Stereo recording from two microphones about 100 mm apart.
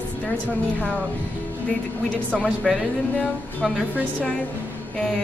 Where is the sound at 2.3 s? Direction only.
10° left (ahead or behind).